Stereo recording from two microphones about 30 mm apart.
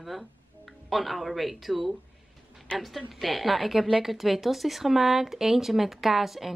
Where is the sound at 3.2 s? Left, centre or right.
Centre.